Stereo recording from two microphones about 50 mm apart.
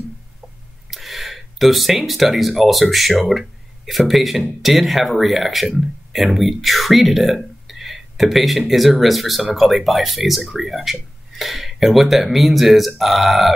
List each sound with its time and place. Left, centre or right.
0.8 s speech: centre